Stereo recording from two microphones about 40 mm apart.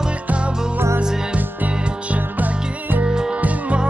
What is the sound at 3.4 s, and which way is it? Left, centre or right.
Music, right.